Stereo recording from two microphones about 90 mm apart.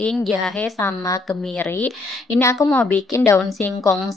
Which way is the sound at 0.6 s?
30° left (ahead or behind).